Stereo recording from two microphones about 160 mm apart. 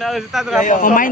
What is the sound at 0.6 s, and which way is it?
Speech, 55° left (ahead or behind).